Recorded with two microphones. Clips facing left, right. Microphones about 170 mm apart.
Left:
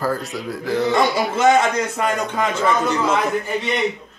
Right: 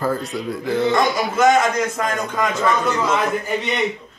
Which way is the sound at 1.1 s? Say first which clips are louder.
Even; 25° left (ahead or behind).